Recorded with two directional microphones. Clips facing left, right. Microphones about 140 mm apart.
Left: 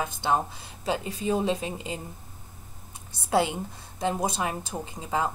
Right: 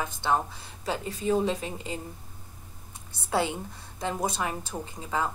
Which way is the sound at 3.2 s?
15° left (ahead or behind).